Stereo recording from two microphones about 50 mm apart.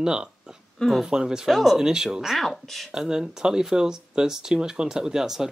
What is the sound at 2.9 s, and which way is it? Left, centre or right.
Speech, centre.